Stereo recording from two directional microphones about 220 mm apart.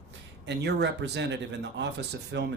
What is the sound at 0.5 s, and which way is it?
Speech, 50° right (ahead or behind).